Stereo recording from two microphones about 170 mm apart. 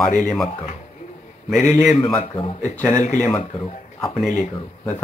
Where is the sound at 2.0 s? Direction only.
40° left (ahead or behind).